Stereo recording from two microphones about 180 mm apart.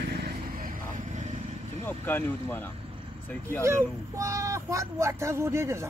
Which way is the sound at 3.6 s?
15° right (ahead or behind).